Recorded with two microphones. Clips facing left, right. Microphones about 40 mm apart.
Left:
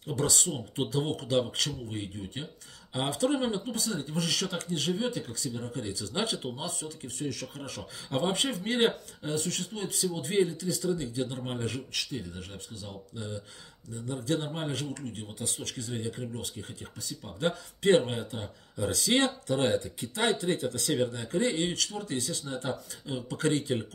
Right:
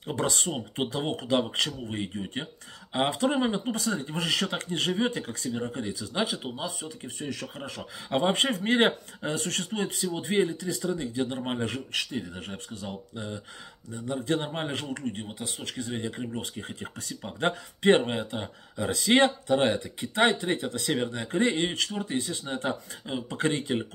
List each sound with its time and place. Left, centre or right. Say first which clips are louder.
0.0 s speech: right 1 dB; right
3.7 s speech: right 2 dB; right
5.9 s speech: left 1 dB; centre
6.6 s speech: right 2 dB; right
8.2 s speech: right 4 dB; right
9.8 s speech: right 2 dB; right
13.9 s speech: right 4 dB; right
14.2 s speech: right 1 dB; right
18.9 s speech: right 5 dB; right
22.5 s speech: right 3 dB; right
23.1 s speech: right 1 dB; right